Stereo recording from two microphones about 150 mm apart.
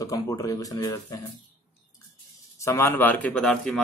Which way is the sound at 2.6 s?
15° left (ahead or behind).